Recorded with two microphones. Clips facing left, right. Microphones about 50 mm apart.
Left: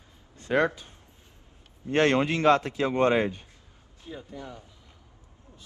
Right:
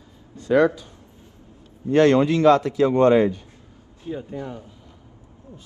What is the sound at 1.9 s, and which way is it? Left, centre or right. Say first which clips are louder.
A man's voice: right 7 dB; left.